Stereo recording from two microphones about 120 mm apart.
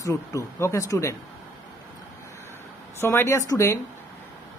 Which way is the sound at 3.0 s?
20° left (ahead or behind).